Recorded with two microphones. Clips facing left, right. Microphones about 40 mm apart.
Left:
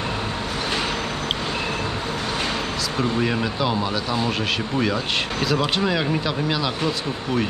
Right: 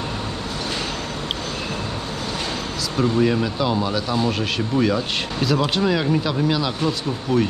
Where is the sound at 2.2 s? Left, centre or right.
Left.